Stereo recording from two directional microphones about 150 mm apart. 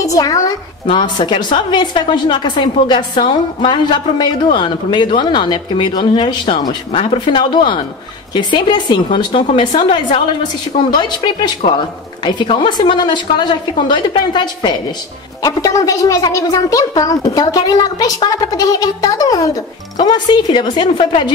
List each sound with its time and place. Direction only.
0.0 s a woman's voice: 25° left (ahead or behind)